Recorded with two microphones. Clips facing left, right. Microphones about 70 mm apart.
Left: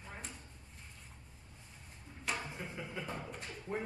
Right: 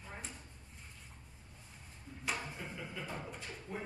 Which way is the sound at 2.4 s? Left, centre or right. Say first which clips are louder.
Left 1 dB; centre.